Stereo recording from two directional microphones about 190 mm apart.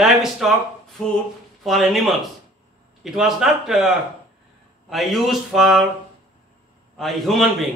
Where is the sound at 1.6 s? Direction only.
Centre (ahead or behind).